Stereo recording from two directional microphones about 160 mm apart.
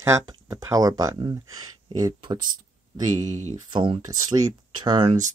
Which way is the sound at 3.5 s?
30° right (ahead or behind).